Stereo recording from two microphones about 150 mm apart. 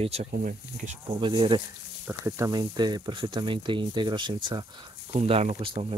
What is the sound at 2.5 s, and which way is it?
Speech, 30° right (ahead or behind).